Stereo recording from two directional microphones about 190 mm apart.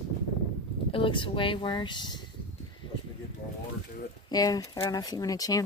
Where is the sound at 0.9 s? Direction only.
25° left (ahead or behind).